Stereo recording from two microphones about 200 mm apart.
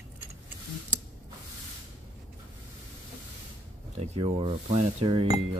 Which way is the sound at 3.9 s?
30° right (ahead or behind).